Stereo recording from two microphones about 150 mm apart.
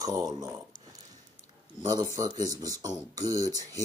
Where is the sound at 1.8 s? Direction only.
30° right (ahead or behind).